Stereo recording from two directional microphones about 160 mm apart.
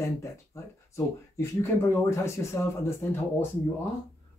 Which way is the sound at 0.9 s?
15° left (ahead or behind).